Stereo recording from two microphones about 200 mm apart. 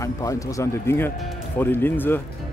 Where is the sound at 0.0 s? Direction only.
15° left (ahead or behind).